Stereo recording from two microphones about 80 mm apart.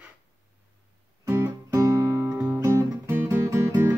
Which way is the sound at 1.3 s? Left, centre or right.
Right.